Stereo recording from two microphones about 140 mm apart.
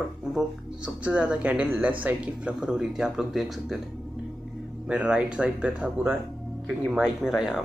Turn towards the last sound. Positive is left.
turn(degrees=-5)  # may be behind; listen again after turning